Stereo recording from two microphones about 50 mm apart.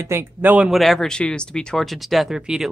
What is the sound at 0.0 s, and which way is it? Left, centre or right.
Speech, right.